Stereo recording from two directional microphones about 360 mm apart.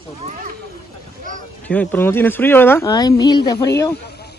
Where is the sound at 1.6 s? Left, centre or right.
Centre.